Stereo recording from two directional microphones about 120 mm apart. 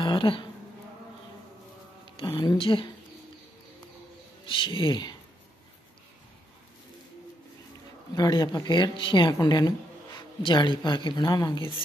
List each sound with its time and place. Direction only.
0.0 s insect: 45° left (ahead or behind)
2.1 s speech: 40° left (ahead or behind)
4.5 s speech: 45° left (ahead or behind)
8.2 s speech: 35° left (ahead or behind)